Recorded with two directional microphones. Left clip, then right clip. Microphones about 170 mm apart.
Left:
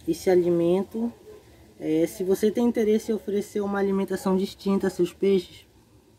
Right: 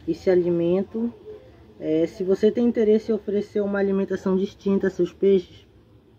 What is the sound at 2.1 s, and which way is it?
Speech, 20° left (ahead or behind).